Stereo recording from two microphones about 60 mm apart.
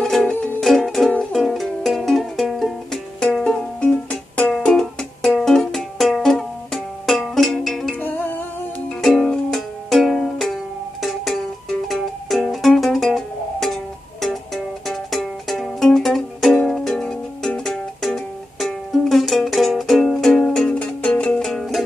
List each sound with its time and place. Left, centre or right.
0.2 s music: left
0.6 s music: centre
3.4 s music: centre
4.5 s music: centre
8.0 s music: left
8.8 s music: centre
12.4 s music: centre
20.6 s music: left
21.5 s music: centre